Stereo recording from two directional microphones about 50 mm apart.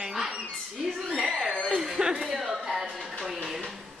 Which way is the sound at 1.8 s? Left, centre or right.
Centre.